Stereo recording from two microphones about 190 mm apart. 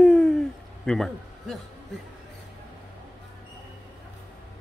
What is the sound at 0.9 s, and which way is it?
Speech, centre (ahead or behind).